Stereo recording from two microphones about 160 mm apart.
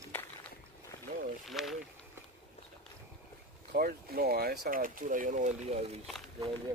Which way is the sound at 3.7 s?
65° right (ahead or behind).